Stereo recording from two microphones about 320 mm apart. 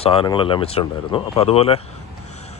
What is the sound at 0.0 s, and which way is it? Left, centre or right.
Speech, centre.